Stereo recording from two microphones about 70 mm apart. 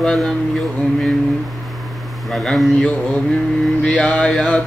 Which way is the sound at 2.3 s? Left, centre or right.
Centre.